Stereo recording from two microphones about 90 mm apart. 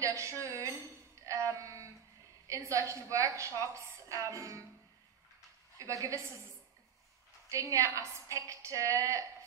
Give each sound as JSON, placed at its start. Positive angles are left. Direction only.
{"t": 0.0, "sound": "a woman's voice", "side_deg": -35}
{"t": 1.2, "sound": "music", "side_deg": -35}
{"t": 2.4, "sound": "a woman's voice", "side_deg": -35}
{"t": 5.8, "sound": "a woman's voice", "side_deg": -35}
{"t": 7.4, "sound": "a woman's voice", "side_deg": -35}